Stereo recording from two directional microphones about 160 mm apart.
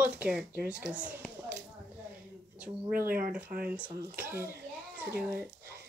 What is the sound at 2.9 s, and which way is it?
Speech, 65° right (ahead or behind).